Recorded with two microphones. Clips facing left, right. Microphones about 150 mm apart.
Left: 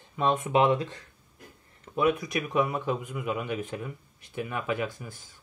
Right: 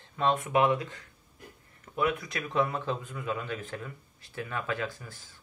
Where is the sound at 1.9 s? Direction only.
20° left (ahead or behind).